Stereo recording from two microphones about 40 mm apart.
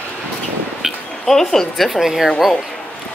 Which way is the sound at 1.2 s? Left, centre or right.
Centre.